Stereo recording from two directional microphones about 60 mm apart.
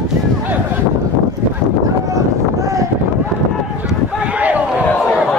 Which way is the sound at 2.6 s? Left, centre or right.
Right.